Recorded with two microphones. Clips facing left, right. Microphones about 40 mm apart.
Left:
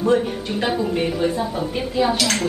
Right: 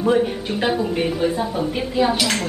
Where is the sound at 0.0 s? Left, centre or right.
Centre.